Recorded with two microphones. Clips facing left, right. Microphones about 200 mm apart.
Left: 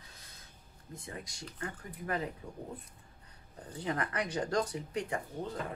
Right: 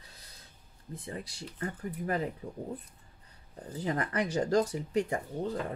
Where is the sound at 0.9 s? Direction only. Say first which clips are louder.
Right 4 dB; 30° right (ahead or behind).